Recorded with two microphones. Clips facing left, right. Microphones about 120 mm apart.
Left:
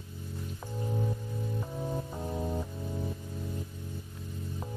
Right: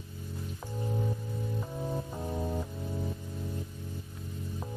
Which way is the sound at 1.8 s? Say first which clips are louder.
Even; centre (ahead or behind).